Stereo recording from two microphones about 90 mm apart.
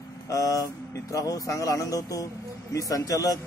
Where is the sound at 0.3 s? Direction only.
40° left (ahead or behind).